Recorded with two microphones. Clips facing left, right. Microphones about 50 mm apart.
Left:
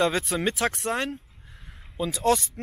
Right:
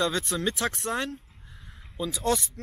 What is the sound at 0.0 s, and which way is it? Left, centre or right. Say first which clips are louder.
Speech: left 3 dB; centre.